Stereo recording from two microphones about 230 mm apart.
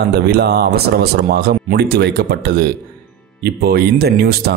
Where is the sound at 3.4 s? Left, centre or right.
Right.